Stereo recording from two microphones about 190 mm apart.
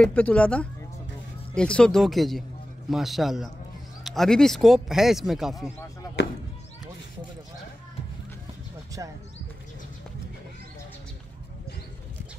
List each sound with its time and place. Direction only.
0.0 s speech: 5° left (ahead or behind)
6.0 s basketball bounce: 20° left (ahead or behind)